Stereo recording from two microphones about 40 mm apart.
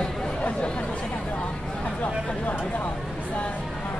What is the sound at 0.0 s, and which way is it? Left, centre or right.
Chatter, left.